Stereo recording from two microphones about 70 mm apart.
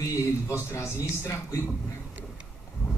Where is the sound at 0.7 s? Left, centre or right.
Left.